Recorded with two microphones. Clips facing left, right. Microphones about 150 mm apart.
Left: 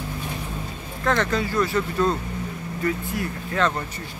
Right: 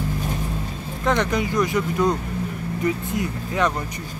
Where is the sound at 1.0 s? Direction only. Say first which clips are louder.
Right 1 dB; 15° right (ahead or behind).